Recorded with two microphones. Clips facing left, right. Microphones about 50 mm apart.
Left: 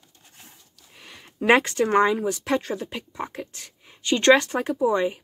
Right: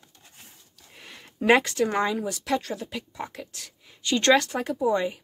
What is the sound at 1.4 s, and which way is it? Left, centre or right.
Speech, left.